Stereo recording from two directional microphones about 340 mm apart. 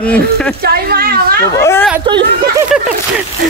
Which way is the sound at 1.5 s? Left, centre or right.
Centre.